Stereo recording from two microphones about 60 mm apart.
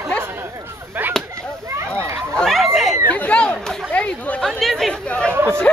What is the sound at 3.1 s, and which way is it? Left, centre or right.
Chatter, left.